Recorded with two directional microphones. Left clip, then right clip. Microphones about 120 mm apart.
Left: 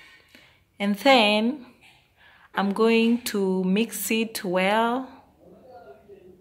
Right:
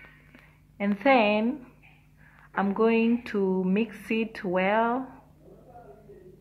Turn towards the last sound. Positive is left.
turn(degrees=25)  # may be behind; listen again after turning